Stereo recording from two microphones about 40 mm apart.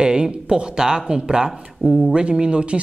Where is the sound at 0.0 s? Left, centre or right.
Right.